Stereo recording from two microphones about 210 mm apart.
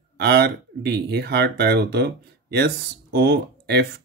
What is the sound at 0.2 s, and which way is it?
Speech, 50° right (ahead or behind).